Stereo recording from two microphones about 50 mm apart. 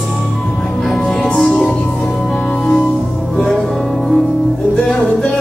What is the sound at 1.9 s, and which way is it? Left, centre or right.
Music, centre.